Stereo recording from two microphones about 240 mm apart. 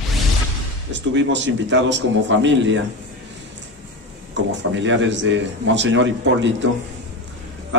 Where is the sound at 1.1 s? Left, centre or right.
Right.